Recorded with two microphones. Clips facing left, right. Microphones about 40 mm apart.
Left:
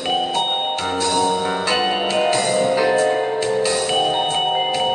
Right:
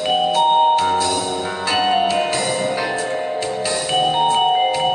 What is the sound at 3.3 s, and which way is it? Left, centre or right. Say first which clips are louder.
Music: left 3 dB; centre.